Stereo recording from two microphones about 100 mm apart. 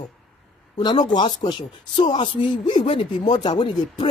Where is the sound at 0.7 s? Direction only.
50° left (ahead or behind).